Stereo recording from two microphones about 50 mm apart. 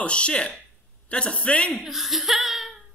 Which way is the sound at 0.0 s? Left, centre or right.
Left.